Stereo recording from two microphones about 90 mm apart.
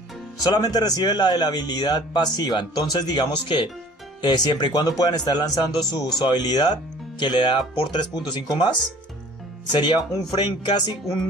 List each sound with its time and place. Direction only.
0.4 s a man's voice: 45° left (ahead or behind)